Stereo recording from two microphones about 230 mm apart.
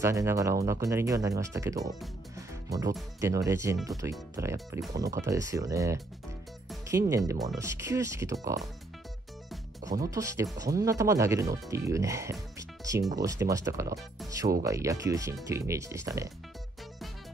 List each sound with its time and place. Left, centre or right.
0.0 s speech: centre
9.9 s speech: centre